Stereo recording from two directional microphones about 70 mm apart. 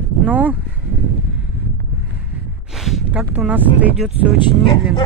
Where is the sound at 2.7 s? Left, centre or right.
Centre.